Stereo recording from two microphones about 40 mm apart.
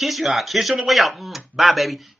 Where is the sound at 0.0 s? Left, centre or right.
Centre.